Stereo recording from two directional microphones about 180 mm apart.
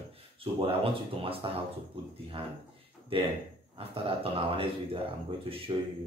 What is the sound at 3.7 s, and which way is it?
Speech, 30° right (ahead or behind).